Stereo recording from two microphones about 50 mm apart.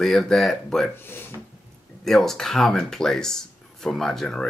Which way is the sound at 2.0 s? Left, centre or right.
Centre.